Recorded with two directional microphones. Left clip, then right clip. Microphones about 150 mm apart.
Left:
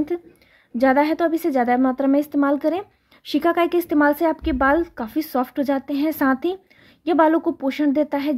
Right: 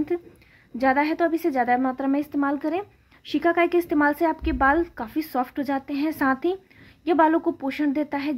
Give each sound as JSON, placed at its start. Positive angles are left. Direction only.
{"t": 0.7, "sound": "a woman's voice", "side_deg": 45}